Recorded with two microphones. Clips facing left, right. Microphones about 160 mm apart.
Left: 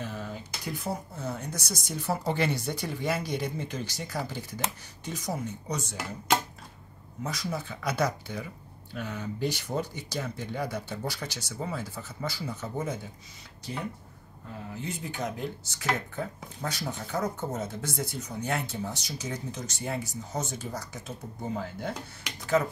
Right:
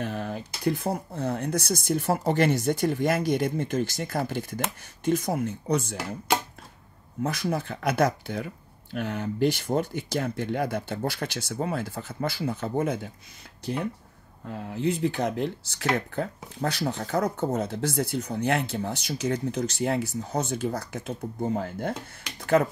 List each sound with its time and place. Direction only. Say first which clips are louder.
0.0 s speech: right 6 dB; 65° right (ahead or behind)
7.2 s speech: right 6 dB; 60° right (ahead or behind)
14.5 s speech: right 9 dB; 65° right (ahead or behind)